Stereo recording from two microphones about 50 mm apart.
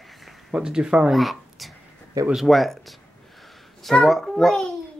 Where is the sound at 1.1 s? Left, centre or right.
Centre.